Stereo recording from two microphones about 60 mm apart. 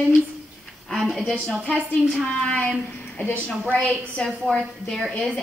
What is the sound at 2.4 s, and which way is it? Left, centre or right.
Speech, centre.